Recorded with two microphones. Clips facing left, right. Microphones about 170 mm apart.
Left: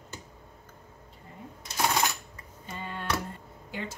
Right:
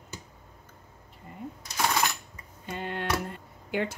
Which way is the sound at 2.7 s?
75° right (ahead or behind).